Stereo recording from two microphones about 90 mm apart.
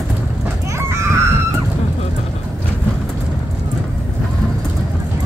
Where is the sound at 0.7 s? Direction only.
30° right (ahead or behind).